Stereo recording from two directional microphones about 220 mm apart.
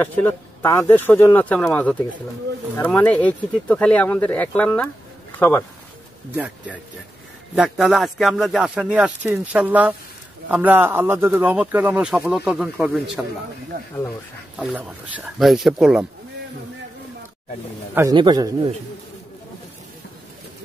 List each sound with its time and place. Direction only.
0.0 s speech: 10° left (ahead or behind)
6.3 s a man's voice: 5° right (ahead or behind)
14.6 s speech: 5° right (ahead or behind)
17.9 s a man's voice: 20° right (ahead or behind)